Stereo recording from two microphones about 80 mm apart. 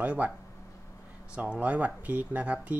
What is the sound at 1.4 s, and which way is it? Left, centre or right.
Speech, centre.